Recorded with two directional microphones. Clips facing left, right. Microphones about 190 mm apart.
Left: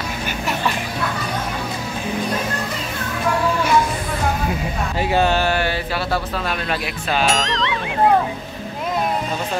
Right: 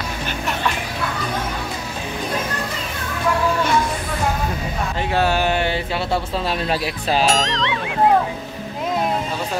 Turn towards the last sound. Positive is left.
turn(degrees=0)  # may be behind; listen again after turning